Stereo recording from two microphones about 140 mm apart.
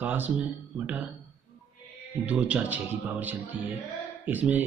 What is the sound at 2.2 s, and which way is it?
Speech, 10° right (ahead or behind).